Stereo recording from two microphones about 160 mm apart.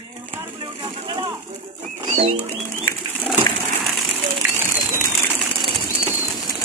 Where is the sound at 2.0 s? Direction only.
35° right (ahead or behind).